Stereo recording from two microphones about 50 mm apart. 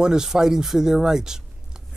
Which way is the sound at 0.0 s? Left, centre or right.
Centre.